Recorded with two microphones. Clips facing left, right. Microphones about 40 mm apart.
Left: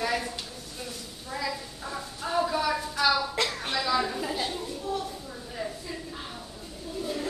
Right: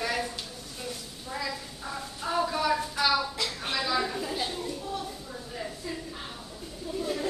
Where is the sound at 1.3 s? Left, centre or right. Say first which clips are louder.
Left 2 dB; centre.